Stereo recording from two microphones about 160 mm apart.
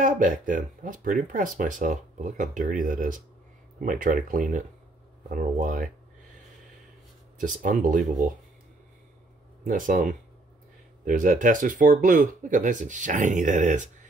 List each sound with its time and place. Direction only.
0.0 s speech: 55° right (ahead or behind)
7.3 s speech: 55° right (ahead or behind)
9.7 s speech: 55° right (ahead or behind)